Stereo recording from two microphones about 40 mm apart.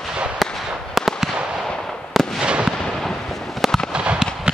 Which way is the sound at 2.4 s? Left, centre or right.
Right.